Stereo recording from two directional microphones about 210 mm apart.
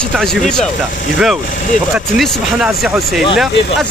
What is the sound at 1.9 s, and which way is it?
Speech, 5° right (ahead or behind).